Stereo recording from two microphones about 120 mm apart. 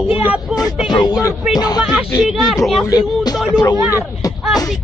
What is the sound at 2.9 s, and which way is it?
Speech, 35° left (ahead or behind).